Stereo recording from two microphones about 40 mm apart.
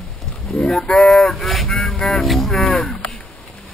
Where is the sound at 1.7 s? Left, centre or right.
Centre.